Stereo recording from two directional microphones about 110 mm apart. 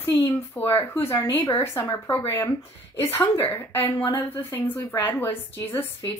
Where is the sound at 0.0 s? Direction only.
25° left (ahead or behind).